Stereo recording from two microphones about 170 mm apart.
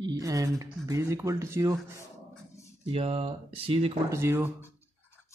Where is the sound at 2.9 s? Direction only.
35° right (ahead or behind).